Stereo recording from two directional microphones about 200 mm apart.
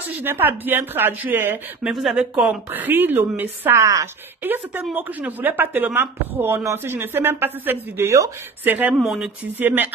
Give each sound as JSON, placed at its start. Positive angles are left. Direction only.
{"t": 0.2, "sound": "speech", "side_deg": -10}